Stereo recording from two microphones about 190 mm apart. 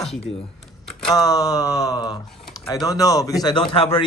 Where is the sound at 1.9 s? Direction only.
20° left (ahead or behind).